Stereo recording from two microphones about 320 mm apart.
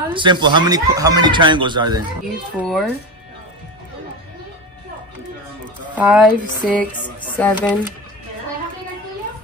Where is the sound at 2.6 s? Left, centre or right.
Centre.